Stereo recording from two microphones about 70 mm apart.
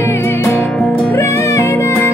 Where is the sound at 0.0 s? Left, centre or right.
Left.